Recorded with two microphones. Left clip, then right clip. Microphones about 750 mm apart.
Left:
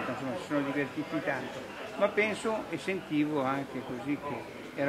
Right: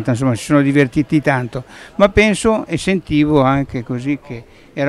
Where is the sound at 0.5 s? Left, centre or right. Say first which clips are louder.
Right 19 dB; right.